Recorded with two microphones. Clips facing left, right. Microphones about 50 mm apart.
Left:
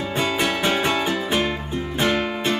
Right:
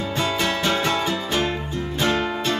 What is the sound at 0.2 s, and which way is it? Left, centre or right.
Music, left.